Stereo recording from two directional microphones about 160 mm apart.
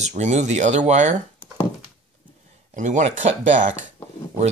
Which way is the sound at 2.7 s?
50° right (ahead or behind).